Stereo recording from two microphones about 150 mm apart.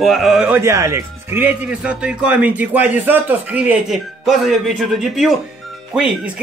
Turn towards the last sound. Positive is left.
turn(degrees=-5)  # may be behind; listen again after turning